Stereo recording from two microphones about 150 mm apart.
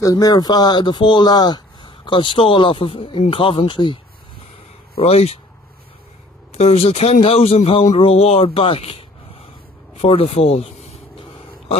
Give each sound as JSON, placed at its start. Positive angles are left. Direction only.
{"t": 0.0, "sound": "speech", "side_deg": 25}
{"t": 4.9, "sound": "speech", "side_deg": 45}
{"t": 6.5, "sound": "speech", "side_deg": 45}